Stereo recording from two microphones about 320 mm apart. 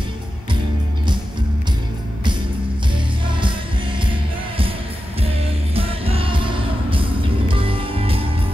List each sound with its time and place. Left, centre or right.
4.0 s music: centre
5.8 s music: centre